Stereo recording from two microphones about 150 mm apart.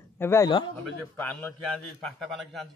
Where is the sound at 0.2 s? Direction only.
20° left (ahead or behind).